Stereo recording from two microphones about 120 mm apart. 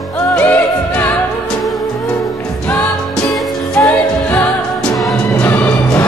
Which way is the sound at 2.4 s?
15° left (ahead or behind).